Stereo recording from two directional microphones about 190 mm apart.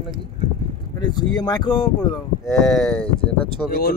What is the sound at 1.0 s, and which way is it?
Speech, 20° left (ahead or behind).